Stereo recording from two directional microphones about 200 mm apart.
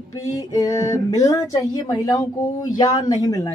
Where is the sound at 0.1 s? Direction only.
20° left (ahead or behind).